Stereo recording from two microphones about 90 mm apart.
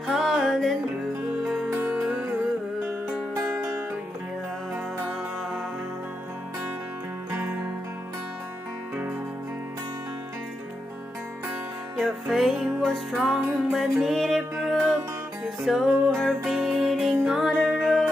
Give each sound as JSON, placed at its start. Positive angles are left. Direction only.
{"t": 0.0, "sound": "music", "side_deg": 0}
{"t": 2.0, "sound": "music", "side_deg": -10}
{"t": 7.2, "sound": "music", "side_deg": -30}
{"t": 12.0, "sound": "music", "side_deg": 0}